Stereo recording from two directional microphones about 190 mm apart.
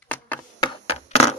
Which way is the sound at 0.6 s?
30° left (ahead or behind).